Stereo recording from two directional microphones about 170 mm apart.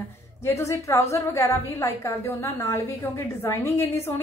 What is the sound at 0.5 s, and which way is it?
A woman's voice, 15° left (ahead or behind).